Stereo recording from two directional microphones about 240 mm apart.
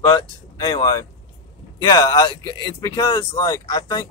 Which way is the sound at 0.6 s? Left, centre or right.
Centre.